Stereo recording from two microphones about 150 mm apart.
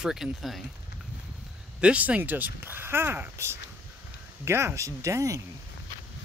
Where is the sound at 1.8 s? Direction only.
10° right (ahead or behind).